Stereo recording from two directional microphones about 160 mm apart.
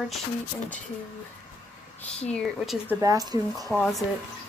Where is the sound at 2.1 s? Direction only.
5° left (ahead or behind).